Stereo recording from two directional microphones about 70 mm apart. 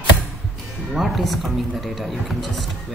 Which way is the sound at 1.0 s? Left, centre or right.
Centre.